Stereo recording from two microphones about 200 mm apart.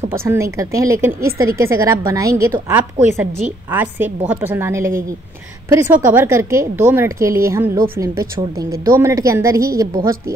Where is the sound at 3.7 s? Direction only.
10° right (ahead or behind).